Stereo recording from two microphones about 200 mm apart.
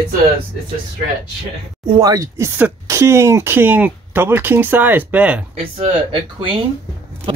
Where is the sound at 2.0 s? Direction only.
15° right (ahead or behind).